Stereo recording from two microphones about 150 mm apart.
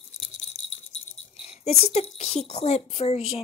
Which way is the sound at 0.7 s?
40° left (ahead or behind).